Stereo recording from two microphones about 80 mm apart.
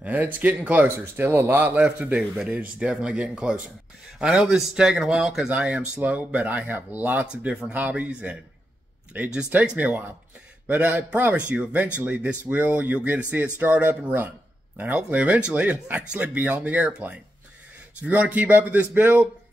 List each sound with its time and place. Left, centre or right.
0.0 s speech: right
0.9 s speech: right